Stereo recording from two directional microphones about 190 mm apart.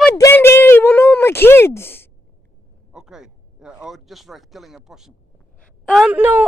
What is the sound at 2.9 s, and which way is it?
A woman's voice, 5° right (ahead or behind).